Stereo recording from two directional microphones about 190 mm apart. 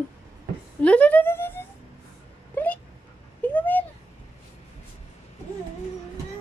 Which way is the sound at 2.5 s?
10° left (ahead or behind).